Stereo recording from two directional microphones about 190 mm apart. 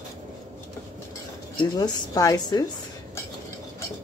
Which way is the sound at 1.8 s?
20° left (ahead or behind).